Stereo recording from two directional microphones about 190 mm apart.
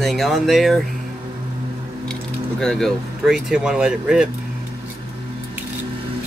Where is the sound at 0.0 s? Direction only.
Centre (ahead or behind).